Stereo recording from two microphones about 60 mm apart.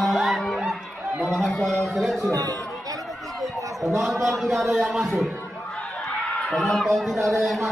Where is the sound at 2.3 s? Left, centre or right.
Right.